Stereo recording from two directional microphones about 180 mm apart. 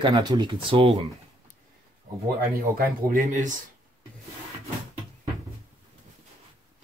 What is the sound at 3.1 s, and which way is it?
Speech, 45° right (ahead or behind).